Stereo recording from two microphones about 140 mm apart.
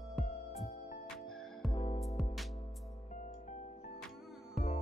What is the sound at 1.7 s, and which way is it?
Music, 40° left (ahead or behind).